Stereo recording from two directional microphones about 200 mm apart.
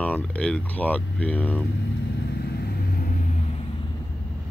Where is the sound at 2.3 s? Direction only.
50° left (ahead or behind).